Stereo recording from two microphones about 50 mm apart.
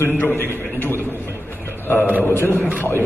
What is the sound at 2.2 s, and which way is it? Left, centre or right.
Speech, left.